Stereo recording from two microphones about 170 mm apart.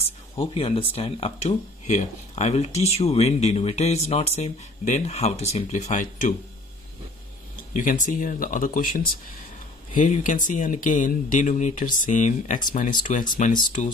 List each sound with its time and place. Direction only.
0.4 s speech: 35° left (ahead or behind)
7.7 s speech: 55° left (ahead or behind)